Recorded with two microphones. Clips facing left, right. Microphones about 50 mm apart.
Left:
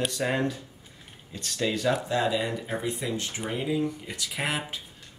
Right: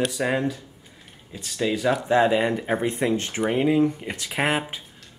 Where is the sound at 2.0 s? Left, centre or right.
Right.